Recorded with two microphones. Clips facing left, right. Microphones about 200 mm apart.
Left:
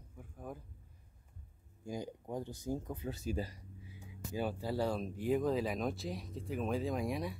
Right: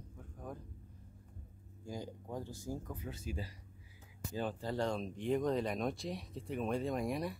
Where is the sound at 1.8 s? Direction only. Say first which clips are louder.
Left 3 dB; 15° left (ahead or behind).